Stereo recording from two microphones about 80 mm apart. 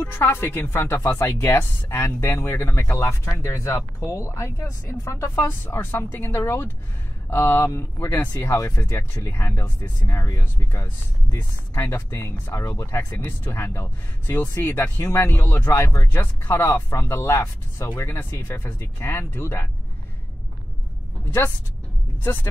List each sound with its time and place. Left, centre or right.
0.0 s a woman's voice: left
22.2 s a woman's voice: left